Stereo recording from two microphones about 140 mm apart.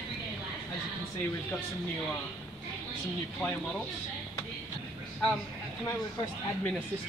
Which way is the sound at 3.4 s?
10° left (ahead or behind).